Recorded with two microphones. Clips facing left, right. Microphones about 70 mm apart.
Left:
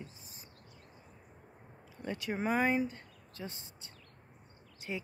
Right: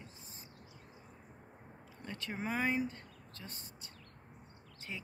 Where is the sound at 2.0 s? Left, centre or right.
Centre.